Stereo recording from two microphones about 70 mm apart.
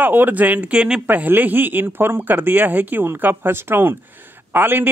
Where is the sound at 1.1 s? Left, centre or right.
Right.